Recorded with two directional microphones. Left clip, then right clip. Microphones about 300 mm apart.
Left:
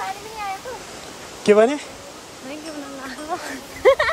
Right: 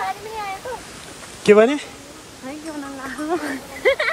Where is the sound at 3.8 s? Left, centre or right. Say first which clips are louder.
Left 3 dB; centre.